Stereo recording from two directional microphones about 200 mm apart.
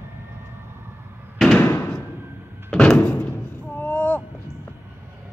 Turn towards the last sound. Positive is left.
turn(degrees=10)  # may be behind; listen again after turning